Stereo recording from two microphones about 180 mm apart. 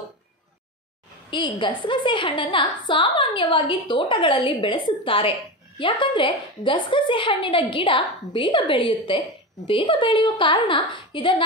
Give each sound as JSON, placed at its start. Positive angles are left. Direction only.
{"t": 1.3, "sound": "a woman's voice", "side_deg": 25}